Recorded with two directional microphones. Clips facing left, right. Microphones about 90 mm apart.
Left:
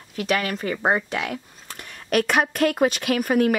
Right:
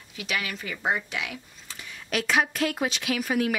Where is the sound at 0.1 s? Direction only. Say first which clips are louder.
Left 8 dB; 45° left (ahead or behind).